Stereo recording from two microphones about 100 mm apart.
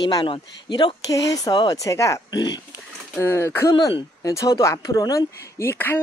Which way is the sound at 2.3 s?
45° left (ahead or behind).